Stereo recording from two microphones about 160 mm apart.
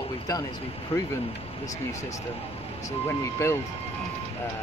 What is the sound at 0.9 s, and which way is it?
Speech, 40° left (ahead or behind).